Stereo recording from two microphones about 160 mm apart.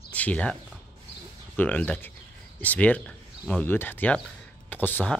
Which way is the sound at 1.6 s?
10° left (ahead or behind).